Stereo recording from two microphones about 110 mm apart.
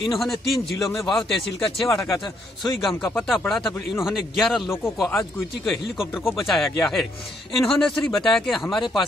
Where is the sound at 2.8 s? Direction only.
Centre (ahead or behind).